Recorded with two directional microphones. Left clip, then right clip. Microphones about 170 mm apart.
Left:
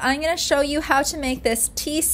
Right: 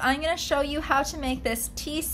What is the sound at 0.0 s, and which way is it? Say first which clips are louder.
A woman's voice: left 4 dB; 40° left (ahead or behind).